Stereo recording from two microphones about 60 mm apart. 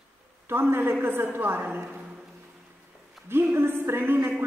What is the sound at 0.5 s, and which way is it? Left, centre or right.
A man's voice, right.